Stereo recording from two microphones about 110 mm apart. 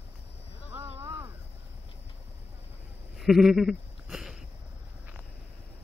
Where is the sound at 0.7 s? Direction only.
20° right (ahead or behind).